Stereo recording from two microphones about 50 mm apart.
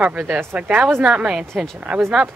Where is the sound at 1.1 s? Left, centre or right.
Centre.